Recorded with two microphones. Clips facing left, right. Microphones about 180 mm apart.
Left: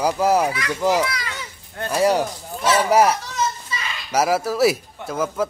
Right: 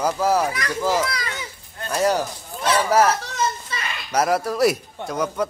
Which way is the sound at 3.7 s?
60° right (ahead or behind).